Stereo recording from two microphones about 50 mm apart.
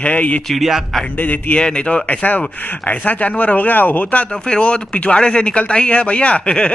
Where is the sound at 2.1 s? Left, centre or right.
Left.